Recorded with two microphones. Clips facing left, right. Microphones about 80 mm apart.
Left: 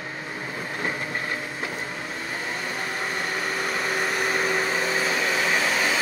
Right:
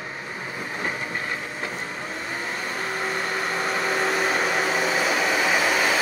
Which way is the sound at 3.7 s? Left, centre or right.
Right.